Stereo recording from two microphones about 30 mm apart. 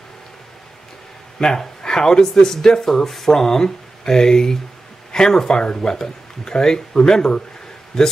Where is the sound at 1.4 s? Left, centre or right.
Left.